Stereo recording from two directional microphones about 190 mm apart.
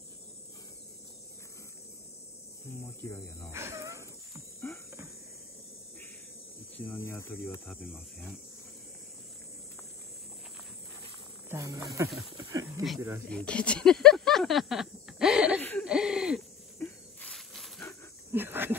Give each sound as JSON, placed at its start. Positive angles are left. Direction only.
{"t": 2.8, "sound": "speech", "side_deg": 10}
{"t": 3.5, "sound": "a sound", "side_deg": -15}
{"t": 4.7, "sound": "cricket", "side_deg": 15}
{"t": 6.9, "sound": "speech", "side_deg": 15}
{"t": 7.6, "sound": "speech", "side_deg": 0}
{"t": 11.4, "sound": "speech", "side_deg": -15}
{"t": 13.3, "sound": "speech", "side_deg": 5}
{"t": 16.7, "sound": "a sound", "side_deg": 5}
{"t": 18.3, "sound": "insect", "side_deg": -10}